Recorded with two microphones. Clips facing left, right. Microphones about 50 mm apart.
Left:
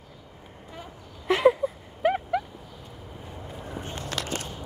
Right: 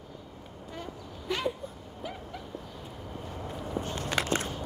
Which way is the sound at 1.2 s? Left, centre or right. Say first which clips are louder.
Left 12 dB; left.